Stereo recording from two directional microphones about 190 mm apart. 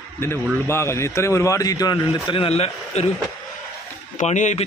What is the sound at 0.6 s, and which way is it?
Speech, 15° left (ahead or behind).